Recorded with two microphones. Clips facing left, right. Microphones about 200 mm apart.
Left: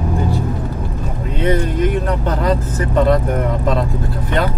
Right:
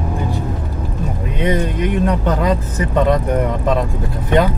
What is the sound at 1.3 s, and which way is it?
Speech, 15° right (ahead or behind).